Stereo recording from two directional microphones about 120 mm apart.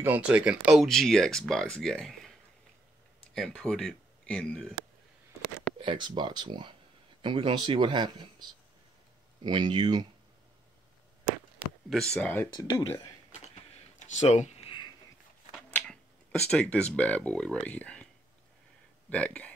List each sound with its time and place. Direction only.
0.0 s speech: 15° right (ahead or behind); by 2.3 s centre (ahead or behind)
3.3 s speech: 5° left (ahead or behind)
5.8 s speech: 40° right (ahead or behind)
12.1 s speech: 10° left (ahead or behind)
12.5 s speech: 45° left (ahead or behind)
13.9 s a sound: 75° left (ahead or behind)
15.7 s speech: 10° left (ahead or behind)
19.0 s speech: 10° left (ahead or behind)